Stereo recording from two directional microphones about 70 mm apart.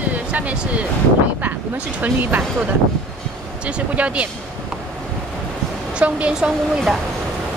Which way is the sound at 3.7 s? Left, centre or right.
Centre.